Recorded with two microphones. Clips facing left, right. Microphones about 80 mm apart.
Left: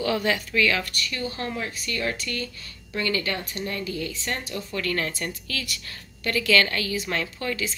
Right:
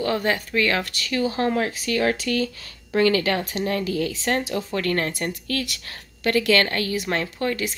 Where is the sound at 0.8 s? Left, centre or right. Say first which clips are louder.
Right 7 dB; right.